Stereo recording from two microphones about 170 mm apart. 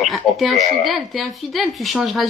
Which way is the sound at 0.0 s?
Centre (ahead or behind).